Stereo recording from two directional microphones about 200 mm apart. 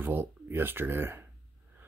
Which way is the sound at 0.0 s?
10° right (ahead or behind).